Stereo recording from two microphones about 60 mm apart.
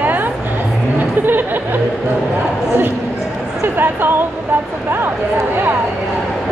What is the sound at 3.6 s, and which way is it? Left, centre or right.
Speech, right.